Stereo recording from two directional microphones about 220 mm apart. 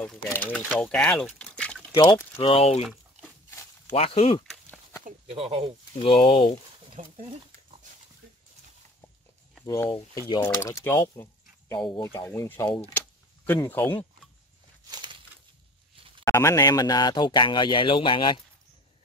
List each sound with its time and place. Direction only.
0.0 s speech: 5° left (ahead or behind)
2.0 s speech: 20° left (ahead or behind)
2.8 s a sound: centre (ahead or behind)
3.9 s speech: 30° left (ahead or behind)
4.5 s a sound: 5° left (ahead or behind)
5.0 s speech: 25° right (ahead or behind)
5.9 s speech: 25° left (ahead or behind)
7.0 s speech: 35° right (ahead or behind)
9.7 s speech: 20° left (ahead or behind)
12.6 s speech: 25° left (ahead or behind)
13.5 s speech: 10° left (ahead or behind)
14.9 s a sound: 20° right (ahead or behind)
16.3 s speech: 15° left (ahead or behind)